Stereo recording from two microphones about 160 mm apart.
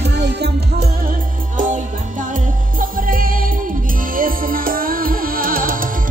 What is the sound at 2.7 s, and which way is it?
Music, 60° right (ahead or behind).